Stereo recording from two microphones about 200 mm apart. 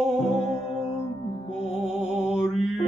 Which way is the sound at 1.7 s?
5° right (ahead or behind).